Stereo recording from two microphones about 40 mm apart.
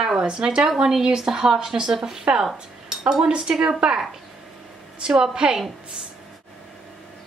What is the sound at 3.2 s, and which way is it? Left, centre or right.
Speech, right.